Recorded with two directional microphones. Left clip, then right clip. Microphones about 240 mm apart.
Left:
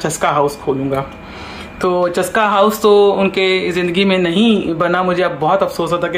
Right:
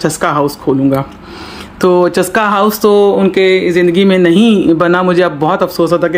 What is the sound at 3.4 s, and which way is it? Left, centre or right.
Speech, right.